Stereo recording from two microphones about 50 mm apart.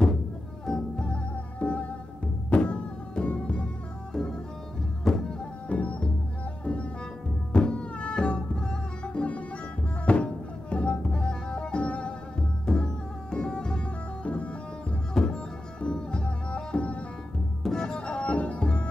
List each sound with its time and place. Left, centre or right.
0.7 s music: centre
4.1 s music: centre
5.7 s music: left
17.6 s music: centre
18.0 s music: left